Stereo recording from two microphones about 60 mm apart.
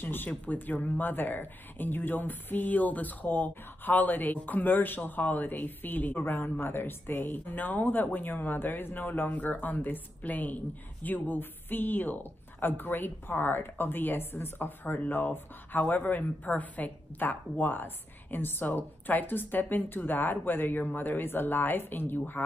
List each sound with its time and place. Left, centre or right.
0.0 s speech: left